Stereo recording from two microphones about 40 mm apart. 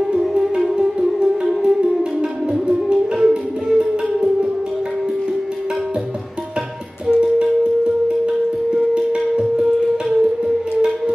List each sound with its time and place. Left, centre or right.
0.3 s music: centre
1.5 s music: centre
7.1 s music: right